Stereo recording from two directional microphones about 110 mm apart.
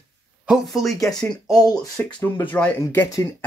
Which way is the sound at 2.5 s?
15° left (ahead or behind).